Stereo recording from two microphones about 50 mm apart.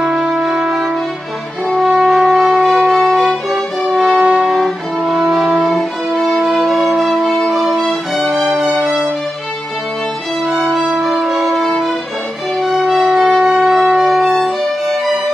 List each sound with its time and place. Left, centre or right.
0.1 s music: centre
1.9 s music: centre
2.9 s violin: centre
4.0 s music: right
4.5 s music: centre
5.4 s music: centre
6.7 s music: centre
8.5 s music: centre
10.4 s music: centre
13.0 s shofar: centre
14.3 s violin: centre